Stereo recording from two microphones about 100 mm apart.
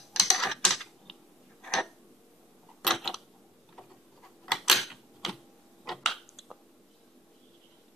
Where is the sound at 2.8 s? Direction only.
Centre (ahead or behind).